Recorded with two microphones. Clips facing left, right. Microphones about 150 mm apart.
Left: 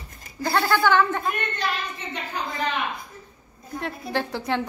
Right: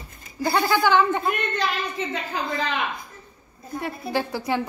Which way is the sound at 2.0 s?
90° right.